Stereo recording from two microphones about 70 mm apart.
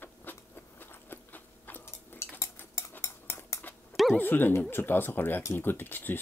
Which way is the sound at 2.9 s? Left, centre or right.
Left.